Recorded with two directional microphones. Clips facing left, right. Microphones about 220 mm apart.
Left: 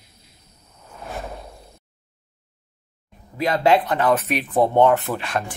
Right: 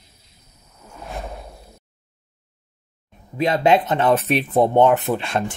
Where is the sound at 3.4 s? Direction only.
20° right (ahead or behind).